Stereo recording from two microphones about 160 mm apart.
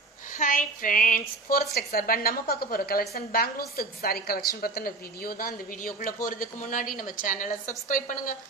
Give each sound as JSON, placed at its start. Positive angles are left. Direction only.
{"t": 0.4, "sound": "a woman's voice", "side_deg": 60}